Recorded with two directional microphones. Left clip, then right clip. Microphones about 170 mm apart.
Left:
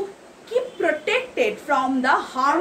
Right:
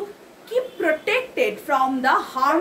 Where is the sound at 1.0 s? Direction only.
15° right (ahead or behind).